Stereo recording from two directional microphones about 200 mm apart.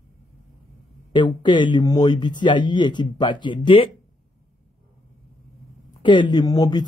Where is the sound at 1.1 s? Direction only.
25° left (ahead or behind).